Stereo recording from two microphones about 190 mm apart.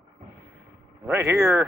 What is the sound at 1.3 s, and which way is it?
Speech, centre (ahead or behind).